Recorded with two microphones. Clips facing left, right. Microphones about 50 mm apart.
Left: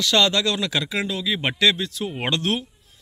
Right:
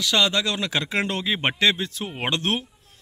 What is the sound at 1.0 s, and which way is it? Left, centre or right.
Speech, right.